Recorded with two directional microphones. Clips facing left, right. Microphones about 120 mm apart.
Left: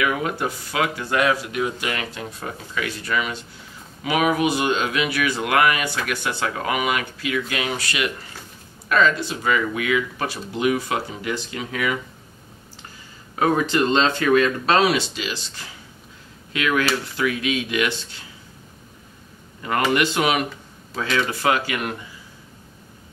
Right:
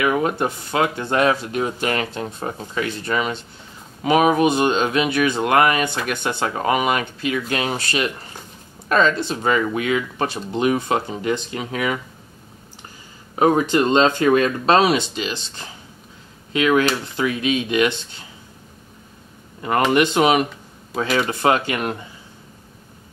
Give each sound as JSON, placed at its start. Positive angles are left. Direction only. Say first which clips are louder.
{"t": 0.0, "sound": "speech", "louder": "right 4 dB", "side_deg": -30}
{"t": 13.4, "sound": "speech", "louder": "right 3 dB", "side_deg": -25}
{"t": 19.9, "sound": "speech", "louder": "right 5 dB", "side_deg": -25}